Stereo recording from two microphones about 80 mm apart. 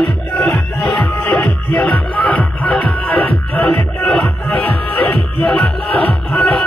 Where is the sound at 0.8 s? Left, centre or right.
Centre.